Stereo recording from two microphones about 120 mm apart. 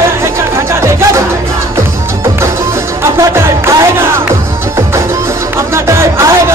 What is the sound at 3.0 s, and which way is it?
Music, 25° right (ahead or behind).